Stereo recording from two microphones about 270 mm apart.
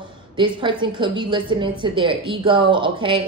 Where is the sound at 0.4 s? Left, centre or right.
Centre.